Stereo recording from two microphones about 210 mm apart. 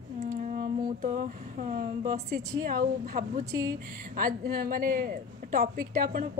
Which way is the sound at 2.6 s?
45° right (ahead or behind).